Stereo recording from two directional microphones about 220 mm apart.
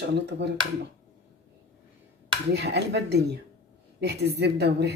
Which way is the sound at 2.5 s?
50° right (ahead or behind).